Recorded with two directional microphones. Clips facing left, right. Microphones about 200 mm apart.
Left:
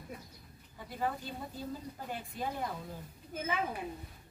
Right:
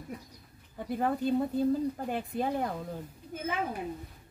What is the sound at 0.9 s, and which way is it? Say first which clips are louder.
Speech: right 9 dB; 55° right (ahead or behind).